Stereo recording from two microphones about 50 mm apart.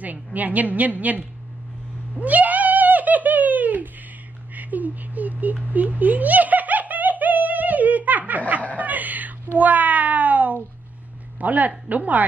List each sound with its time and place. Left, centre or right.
0.0 s a woman's voice: right
2.1 s a sound: right
5.7 s giggle: right
8.7 s a sound: right
9.6 s cat: right
11.3 s a woman's voice: right